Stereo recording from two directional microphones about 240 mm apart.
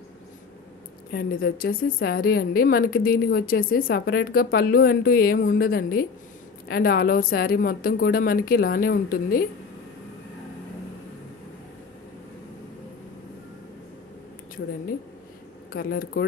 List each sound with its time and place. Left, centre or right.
1.1 s a woman's voice: left
15.7 s a woman's voice: left